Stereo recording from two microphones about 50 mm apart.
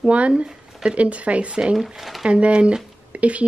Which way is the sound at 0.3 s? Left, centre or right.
Right.